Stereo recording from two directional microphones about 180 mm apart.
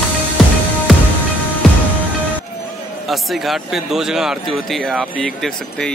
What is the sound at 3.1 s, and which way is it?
Speech, centre (ahead or behind).